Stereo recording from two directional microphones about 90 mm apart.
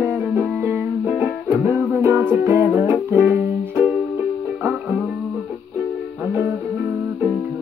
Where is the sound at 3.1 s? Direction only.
20° right (ahead or behind).